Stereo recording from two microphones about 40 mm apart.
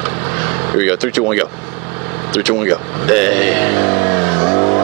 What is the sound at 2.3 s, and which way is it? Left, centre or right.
Vehicle, centre.